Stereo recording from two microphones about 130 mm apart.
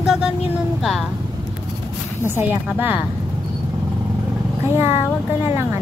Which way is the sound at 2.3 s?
15° right (ahead or behind).